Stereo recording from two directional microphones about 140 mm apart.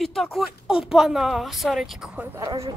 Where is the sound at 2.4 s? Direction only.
25° right (ahead or behind).